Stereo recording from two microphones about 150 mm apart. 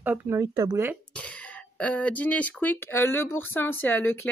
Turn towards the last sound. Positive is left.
turn(degrees=15)  # may be behind; listen again after turning